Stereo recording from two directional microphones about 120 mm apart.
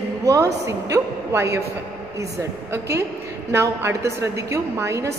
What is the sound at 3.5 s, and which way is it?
A woman's voice, 25° right (ahead or behind).